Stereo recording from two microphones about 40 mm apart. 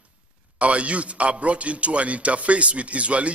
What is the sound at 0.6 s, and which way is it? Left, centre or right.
A man's voice, right.